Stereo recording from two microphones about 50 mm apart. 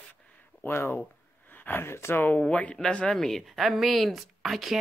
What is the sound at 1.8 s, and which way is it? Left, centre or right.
Speech, left.